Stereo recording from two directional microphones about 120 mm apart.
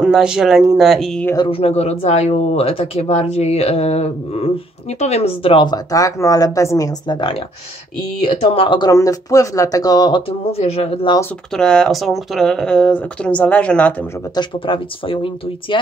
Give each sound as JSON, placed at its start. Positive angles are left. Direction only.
{"t": 0.0, "sound": "speech", "side_deg": -5}
{"t": 1.5, "sound": "speech", "side_deg": 60}
{"t": 5.7, "sound": "speech", "side_deg": 30}
{"t": 7.1, "sound": "speech", "side_deg": 40}
{"t": 8.4, "sound": "speech", "side_deg": 45}
{"t": 10.6, "sound": "speech", "side_deg": 60}
{"t": 11.5, "sound": "speech", "side_deg": 5}
{"t": 14.3, "sound": "speech", "side_deg": 45}